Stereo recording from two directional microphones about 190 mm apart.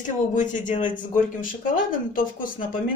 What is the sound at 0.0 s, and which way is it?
Speech, 40° left (ahead or behind).